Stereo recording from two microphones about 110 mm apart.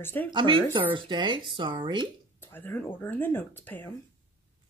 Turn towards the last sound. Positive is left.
turn(degrees=15)  # may be behind; listen again after turning